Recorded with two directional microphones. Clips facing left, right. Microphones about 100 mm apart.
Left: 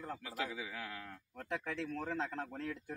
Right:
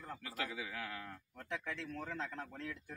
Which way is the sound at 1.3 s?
40° left (ahead or behind).